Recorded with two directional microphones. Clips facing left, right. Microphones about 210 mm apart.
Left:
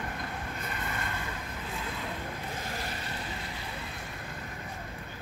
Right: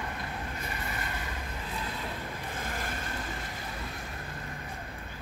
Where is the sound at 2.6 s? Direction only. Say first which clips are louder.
Right 1 dB; 50° right (ahead or behind).